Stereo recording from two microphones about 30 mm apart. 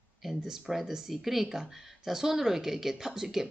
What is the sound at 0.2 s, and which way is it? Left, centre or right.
Speech, centre.